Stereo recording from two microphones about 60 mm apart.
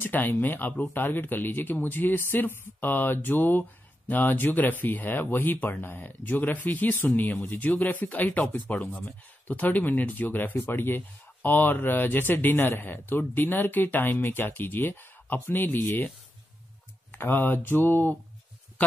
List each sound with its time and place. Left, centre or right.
0.0 s speech: left
17.1 s speech: left